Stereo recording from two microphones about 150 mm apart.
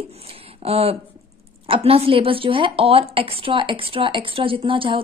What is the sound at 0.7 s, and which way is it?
A woman's voice, 40° right (ahead or behind).